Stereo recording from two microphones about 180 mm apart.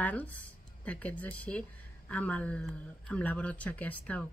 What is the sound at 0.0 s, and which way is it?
Speech, 10° left (ahead or behind).